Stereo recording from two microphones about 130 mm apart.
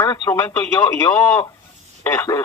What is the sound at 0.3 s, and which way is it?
Speech, 15° left (ahead or behind).